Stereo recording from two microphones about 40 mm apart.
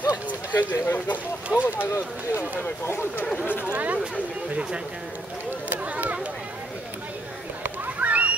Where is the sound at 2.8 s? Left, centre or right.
Left.